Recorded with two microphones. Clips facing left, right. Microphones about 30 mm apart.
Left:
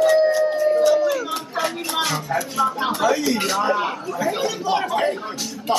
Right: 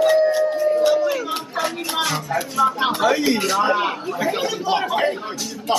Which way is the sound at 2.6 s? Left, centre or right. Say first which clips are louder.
Right 3 dB; right.